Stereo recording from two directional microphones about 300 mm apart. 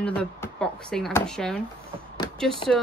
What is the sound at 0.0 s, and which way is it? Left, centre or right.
Speech, centre.